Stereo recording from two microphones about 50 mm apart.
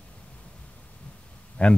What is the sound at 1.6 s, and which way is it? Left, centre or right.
Speech, left.